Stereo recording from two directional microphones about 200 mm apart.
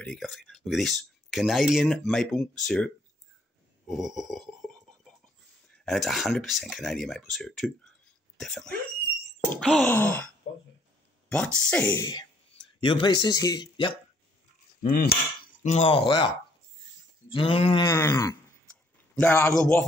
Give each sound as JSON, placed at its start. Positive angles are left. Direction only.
{"t": 0.0, "sound": "speech", "side_deg": 0}
{"t": 5.9, "sound": "speech", "side_deg": 0}
{"t": 11.2, "sound": "speech", "side_deg": 5}
{"t": 12.0, "sound": "speech", "side_deg": 20}
{"t": 14.8, "sound": "a sound", "side_deg": 45}
{"t": 15.4, "sound": "speech", "side_deg": 35}
{"t": 17.3, "sound": "speech", "side_deg": 25}